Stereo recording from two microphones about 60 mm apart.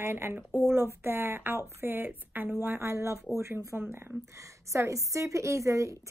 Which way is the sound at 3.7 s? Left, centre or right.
Right.